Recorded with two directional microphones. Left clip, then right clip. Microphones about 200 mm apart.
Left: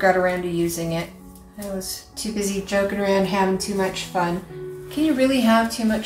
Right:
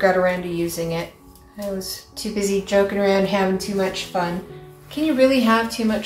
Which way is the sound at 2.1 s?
20° right (ahead or behind).